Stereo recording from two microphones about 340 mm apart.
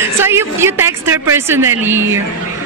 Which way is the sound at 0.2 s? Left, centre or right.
Centre.